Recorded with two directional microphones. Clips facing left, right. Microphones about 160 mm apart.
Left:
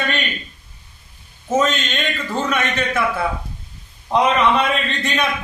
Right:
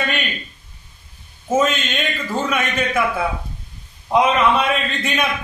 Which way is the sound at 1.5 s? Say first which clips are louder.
Even; 10° right (ahead or behind).